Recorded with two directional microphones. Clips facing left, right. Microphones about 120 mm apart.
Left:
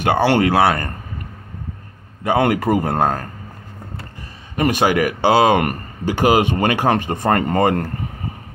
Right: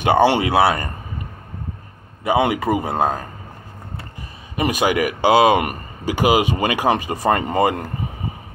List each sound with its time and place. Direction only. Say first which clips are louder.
0.0 s a man's voice: even; 15° right (ahead or behind)
2.2 s a man's voice: left 1 dB; 10° right (ahead or behind)
4.6 s a man's voice: left 2 dB; 15° right (ahead or behind)